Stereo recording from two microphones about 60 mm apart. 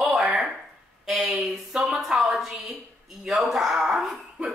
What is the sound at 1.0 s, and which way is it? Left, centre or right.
Speech, centre.